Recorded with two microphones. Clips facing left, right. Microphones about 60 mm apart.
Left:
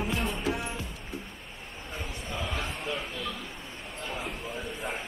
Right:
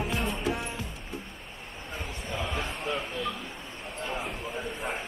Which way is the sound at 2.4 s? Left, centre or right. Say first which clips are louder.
Even; centre.